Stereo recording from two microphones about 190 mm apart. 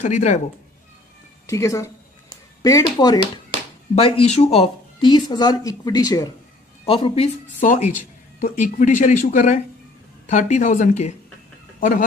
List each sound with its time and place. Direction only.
0.0 s speech: 40° left (ahead or behind)
1.5 s speech: 15° left (ahead or behind)
3.9 s speech: 30° left (ahead or behind)
7.6 s speech: 45° left (ahead or behind)